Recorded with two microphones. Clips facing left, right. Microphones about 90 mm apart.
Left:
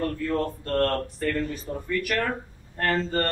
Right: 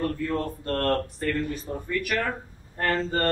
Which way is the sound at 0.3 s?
5° right (ahead or behind).